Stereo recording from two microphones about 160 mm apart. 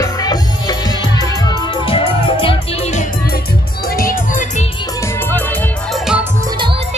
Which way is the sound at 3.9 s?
60° left (ahead or behind).